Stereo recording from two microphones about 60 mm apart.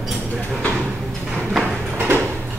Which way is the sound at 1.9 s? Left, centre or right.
Right.